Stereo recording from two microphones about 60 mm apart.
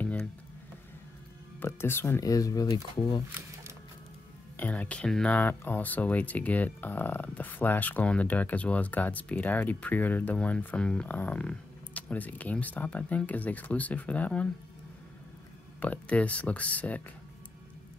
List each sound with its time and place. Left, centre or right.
1.6 s speech: left
2.1 s speech: left
4.6 s speech: left
11.1 s speech: left
15.8 s speech: left